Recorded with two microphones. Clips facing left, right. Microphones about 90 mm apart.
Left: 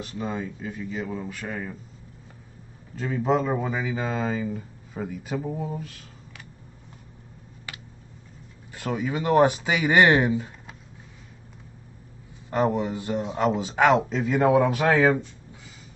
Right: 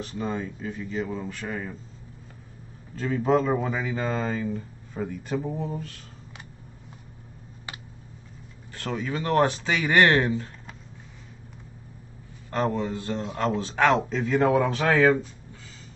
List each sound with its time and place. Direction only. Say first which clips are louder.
0.0 s speech: even; 5° left (ahead or behind)
3.0 s speech: right 1 dB; 5° left (ahead or behind)
8.7 s speech: left 2 dB; 15° left (ahead or behind)
12.4 s speech: left 3 dB; 15° left (ahead or behind)